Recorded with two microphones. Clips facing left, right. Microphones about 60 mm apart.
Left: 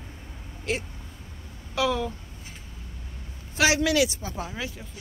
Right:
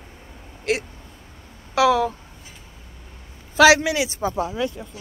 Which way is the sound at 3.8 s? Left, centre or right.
Centre.